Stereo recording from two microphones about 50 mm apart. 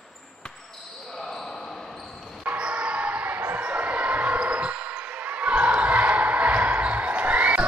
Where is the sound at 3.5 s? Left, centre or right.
Right.